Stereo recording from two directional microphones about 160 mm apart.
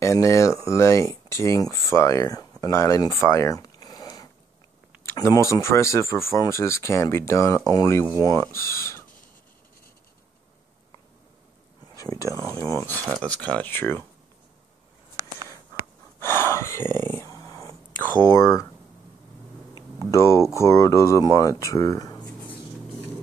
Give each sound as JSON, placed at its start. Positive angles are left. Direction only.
{"t": 0.0, "sound": "speech", "side_deg": 20}
{"t": 12.0, "sound": "speech", "side_deg": 20}
{"t": 16.4, "sound": "a sound", "side_deg": 15}
{"t": 17.2, "sound": "whispering", "side_deg": 20}
{"t": 18.3, "sound": "speech", "side_deg": 15}
{"t": 20.0, "sound": "speech", "side_deg": 20}